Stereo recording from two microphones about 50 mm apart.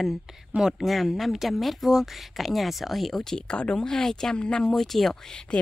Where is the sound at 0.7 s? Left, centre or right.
Centre.